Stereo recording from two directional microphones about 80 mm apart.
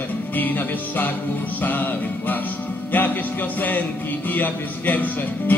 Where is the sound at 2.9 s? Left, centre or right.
Left.